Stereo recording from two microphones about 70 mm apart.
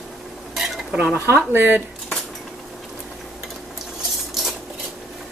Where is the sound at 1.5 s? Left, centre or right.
Right.